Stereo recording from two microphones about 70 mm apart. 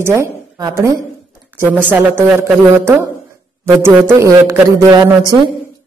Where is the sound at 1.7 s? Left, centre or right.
Right.